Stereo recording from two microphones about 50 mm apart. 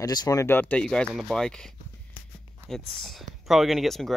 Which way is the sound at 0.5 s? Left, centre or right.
Left.